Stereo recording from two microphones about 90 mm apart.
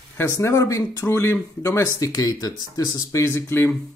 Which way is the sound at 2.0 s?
45° left (ahead or behind).